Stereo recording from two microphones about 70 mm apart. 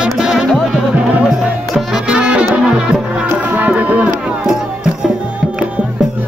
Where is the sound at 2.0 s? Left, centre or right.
Centre.